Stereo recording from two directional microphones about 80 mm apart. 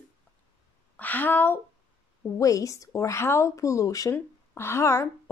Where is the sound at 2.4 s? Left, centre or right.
Left.